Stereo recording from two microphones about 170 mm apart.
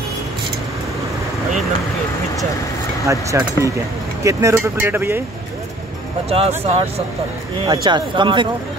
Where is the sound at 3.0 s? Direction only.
20° right (ahead or behind).